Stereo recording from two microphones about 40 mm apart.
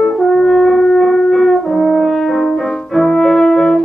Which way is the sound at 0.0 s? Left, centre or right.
Centre.